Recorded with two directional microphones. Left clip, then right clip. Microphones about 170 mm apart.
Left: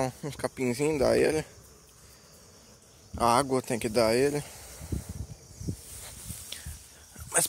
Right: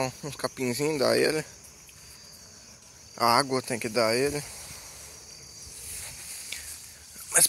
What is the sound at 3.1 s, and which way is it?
Speech, 30° left (ahead or behind).